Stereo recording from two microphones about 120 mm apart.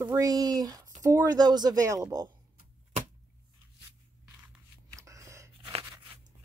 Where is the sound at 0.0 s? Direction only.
30° right (ahead or behind).